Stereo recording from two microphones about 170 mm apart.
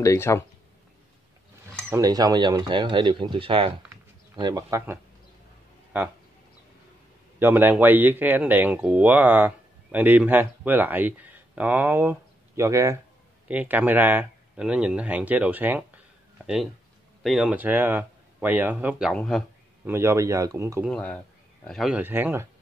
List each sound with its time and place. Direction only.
0.0 s speech: 15° left (ahead or behind)
1.9 s speech: 20° right (ahead or behind)
7.3 s speech: 10° right (ahead or behind)
17.2 s speech: centre (ahead or behind)
19.9 s speech: 15° right (ahead or behind)
20.9 s speech: 5° left (ahead or behind); by 22.5 s 15° right (ahead or behind)